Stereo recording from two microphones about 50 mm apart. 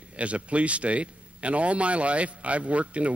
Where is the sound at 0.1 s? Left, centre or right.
Right.